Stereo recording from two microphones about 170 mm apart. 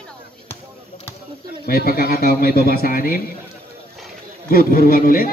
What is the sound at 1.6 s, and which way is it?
A man's voice, 60° left (ahead or behind).